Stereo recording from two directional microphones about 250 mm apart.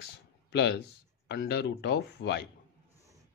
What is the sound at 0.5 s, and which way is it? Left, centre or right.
Speech, left.